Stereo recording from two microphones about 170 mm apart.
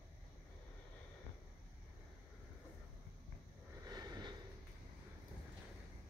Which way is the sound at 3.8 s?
25° right (ahead or behind).